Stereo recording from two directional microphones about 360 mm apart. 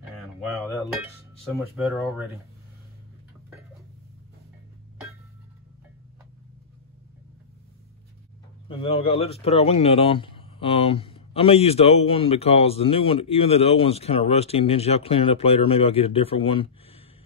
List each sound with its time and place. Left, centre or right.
1.5 s speech: centre
8.6 s speech: centre